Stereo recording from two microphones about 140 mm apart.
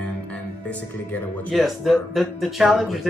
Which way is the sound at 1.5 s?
Centre (ahead or behind).